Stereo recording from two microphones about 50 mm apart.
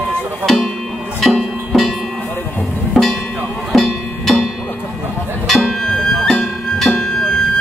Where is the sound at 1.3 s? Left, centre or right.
Centre.